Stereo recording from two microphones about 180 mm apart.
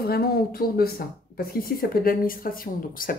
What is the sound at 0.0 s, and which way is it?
Speech, 55° left (ahead or behind).